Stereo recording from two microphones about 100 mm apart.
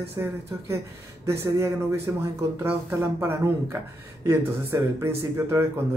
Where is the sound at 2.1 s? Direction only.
15° right (ahead or behind).